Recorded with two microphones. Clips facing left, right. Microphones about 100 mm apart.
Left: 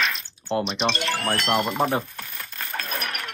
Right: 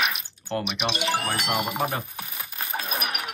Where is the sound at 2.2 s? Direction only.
15° right (ahead or behind).